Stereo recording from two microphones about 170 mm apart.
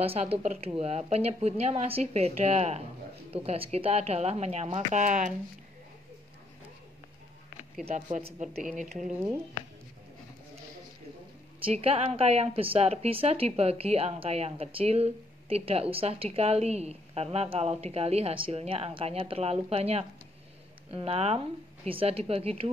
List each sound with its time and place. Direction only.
0.0 s a woman's voice: 35° right (ahead or behind)
7.8 s a woman's voice: 40° right (ahead or behind)
11.6 s a woman's voice: 35° right (ahead or behind)